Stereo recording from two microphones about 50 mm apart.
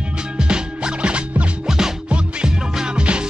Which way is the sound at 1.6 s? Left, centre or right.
Centre.